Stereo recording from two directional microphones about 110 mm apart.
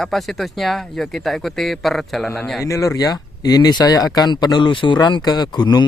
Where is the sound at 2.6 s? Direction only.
30° left (ahead or behind).